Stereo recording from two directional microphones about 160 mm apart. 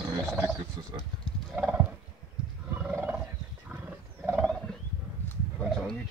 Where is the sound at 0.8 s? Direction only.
35° right (ahead or behind).